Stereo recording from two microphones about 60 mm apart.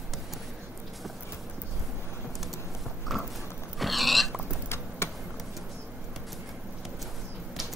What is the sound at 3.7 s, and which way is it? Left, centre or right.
Burping, centre.